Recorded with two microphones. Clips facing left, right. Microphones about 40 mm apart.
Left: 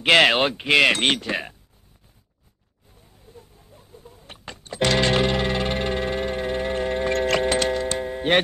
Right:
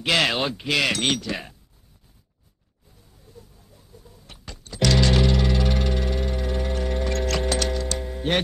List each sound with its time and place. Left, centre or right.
0.0 s speech: left
3.3 s music: left